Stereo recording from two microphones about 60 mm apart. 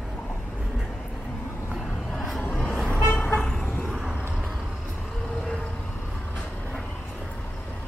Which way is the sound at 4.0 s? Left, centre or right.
Centre.